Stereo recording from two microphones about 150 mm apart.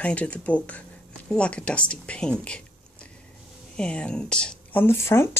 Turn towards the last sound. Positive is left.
turn(degrees=15)  # may be behind; listen again after turning